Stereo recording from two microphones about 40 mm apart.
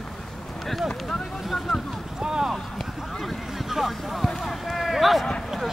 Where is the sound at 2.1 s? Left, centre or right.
Centre.